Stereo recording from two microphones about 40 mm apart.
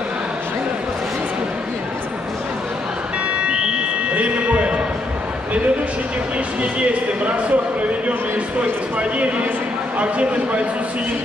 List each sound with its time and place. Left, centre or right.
3.4 s a sound: right
6.6 s speech: right
8.9 s speech: right